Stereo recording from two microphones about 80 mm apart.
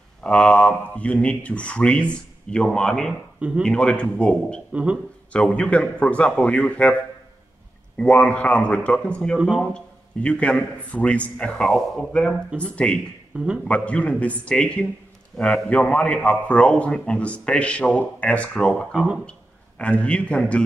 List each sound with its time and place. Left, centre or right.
0.2 s a man's voice: centre
3.3 s a man's voice: centre
3.6 s a man's voice: centre
8.0 s a man's voice: centre
13.3 s a man's voice: centre
13.7 s a man's voice: centre